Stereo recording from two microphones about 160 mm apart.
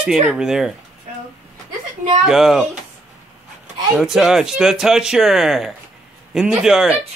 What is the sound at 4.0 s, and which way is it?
Speech, 5° right (ahead or behind).